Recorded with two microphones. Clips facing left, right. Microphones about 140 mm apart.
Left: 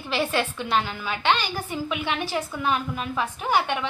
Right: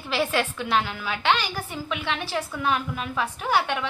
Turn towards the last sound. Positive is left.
turn(degrees=0)  # may be behind; listen again after turning